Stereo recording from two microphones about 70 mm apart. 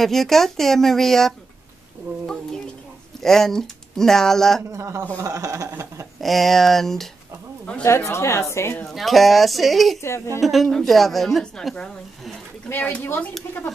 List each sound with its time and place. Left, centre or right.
0.0 s speech: centre
3.2 s speech: centre
4.7 s speech: right
6.2 s speech: centre
7.8 s a woman's voice: left
8.8 s speech: centre
10.0 s a woman's voice: left
10.4 s speech: centre
12.6 s a woman's voice: left